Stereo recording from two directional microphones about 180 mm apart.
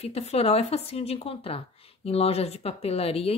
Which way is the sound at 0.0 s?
35° left (ahead or behind).